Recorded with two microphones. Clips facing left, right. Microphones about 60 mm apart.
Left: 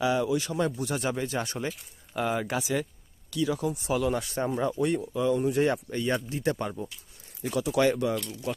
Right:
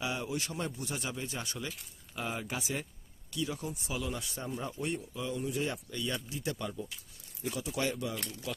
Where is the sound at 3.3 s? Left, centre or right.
Left.